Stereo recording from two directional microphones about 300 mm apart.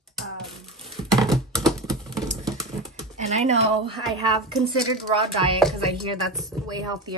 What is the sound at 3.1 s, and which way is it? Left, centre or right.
Speech, right.